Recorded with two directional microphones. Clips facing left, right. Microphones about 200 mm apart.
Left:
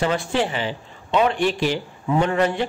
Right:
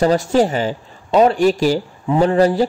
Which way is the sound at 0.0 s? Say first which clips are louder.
Right 7 dB; 40° right (ahead or behind).